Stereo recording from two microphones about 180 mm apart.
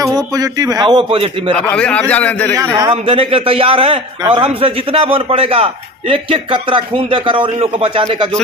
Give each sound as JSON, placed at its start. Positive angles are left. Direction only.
{"t": 0.0, "sound": "a man's voice", "side_deg": -20}
{"t": 1.7, "sound": "a man's voice", "side_deg": 5}
{"t": 2.9, "sound": "a man's voice", "side_deg": -30}